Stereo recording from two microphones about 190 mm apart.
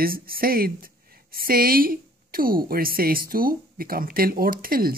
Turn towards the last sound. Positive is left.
turn(degrees=-50)  # may be behind; listen again after turning